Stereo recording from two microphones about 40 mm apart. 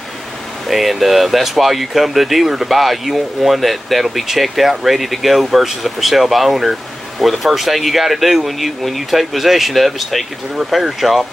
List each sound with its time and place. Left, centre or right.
0.7 s speech: centre